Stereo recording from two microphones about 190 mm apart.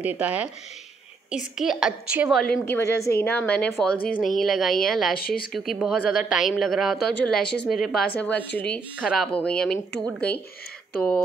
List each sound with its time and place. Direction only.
0.0 s speech: 5° right (ahead or behind)
2.4 s a woman's voice: 5° left (ahead or behind)
5.1 s speech: 50° left (ahead or behind)
5.5 s a woman's voice: centre (ahead or behind)